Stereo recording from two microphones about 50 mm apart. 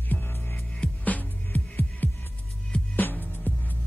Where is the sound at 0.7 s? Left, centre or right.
Left.